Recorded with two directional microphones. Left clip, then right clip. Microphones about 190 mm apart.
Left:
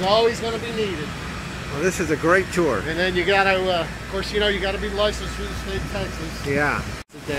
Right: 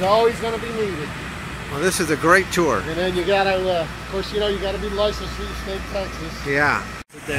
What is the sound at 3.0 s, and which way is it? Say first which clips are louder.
Speech: left 2 dB; 50° right (ahead or behind).